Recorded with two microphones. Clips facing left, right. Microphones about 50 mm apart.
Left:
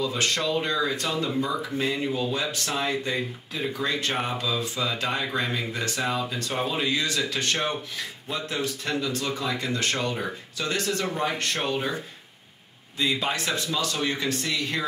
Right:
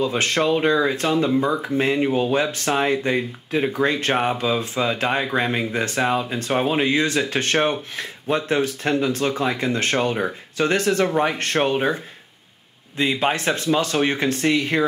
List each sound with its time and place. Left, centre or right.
0.0 s speech: right